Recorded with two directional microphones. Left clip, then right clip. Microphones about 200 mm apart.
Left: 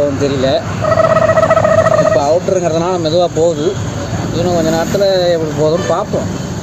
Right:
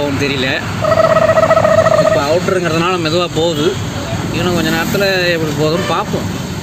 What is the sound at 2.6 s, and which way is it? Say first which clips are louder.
Speech: left 1 dB; 35° right (ahead or behind).